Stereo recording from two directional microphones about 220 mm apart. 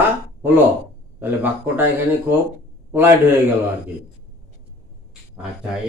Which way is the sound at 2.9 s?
10° right (ahead or behind).